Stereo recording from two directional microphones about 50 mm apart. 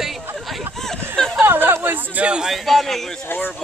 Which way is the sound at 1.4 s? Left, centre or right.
Right.